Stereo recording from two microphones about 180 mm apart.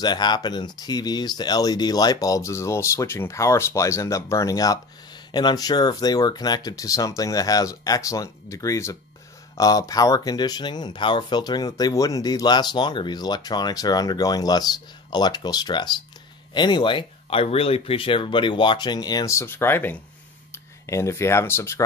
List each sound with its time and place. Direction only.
0.0 s speech: 25° left (ahead or behind)